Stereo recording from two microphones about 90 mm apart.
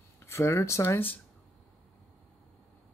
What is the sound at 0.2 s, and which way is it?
Speech, 30° left (ahead or behind).